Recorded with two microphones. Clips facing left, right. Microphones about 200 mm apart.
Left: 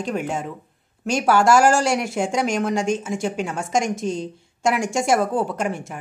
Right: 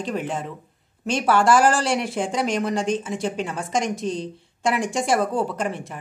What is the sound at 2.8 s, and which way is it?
Speech, 45° left (ahead or behind).